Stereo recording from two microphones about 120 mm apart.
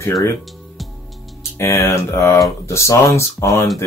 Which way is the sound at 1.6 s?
25° left (ahead or behind).